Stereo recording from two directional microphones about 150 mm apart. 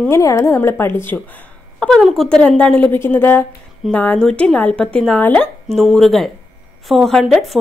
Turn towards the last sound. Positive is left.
turn(degrees=0)  # may be behind; listen again after turning